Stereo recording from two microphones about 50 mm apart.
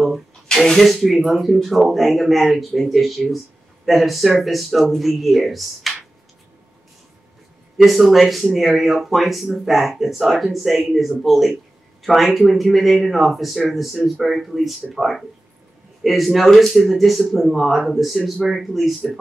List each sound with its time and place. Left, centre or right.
0.5 s speech: centre
7.7 s speech: centre